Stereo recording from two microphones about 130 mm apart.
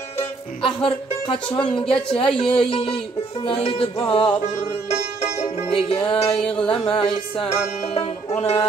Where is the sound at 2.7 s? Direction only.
50° left (ahead or behind).